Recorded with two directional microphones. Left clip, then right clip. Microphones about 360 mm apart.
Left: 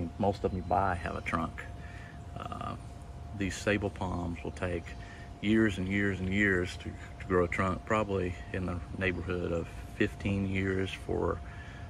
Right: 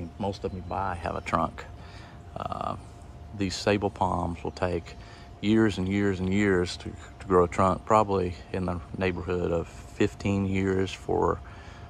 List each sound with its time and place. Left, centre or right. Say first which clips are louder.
0.2 s speech: left 1 dB; centre